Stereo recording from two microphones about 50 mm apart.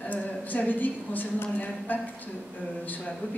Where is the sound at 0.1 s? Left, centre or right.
Left.